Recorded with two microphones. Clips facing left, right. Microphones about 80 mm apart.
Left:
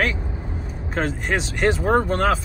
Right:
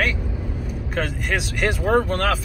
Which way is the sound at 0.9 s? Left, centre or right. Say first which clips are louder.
Left 2 dB; centre.